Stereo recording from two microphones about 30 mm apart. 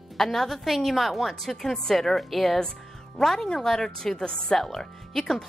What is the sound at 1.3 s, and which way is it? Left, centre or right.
A woman's voice, centre.